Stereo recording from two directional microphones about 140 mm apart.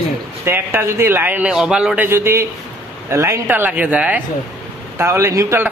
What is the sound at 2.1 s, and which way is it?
A man's voice, 20° right (ahead or behind).